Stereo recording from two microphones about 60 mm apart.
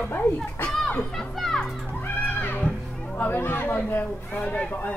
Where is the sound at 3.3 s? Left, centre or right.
Left.